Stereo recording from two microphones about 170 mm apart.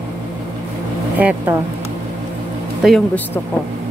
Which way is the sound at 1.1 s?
10° right (ahead or behind).